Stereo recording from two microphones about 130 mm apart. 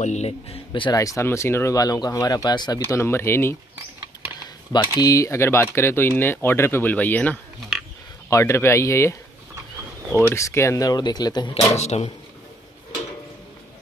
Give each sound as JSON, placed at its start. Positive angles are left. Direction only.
{"t": 0.0, "sound": "speech", "side_deg": 60}
{"t": 0.9, "sound": "speech", "side_deg": 25}
{"t": 3.0, "sound": "speech", "side_deg": 20}
{"t": 4.7, "sound": "speech", "side_deg": 30}
{"t": 10.3, "sound": "speech", "side_deg": 20}
{"t": 11.7, "sound": "speech", "side_deg": 55}